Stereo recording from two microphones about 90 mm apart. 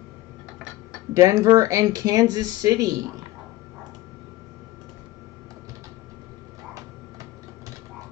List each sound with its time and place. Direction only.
1.1 s speech: 35° right (ahead or behind)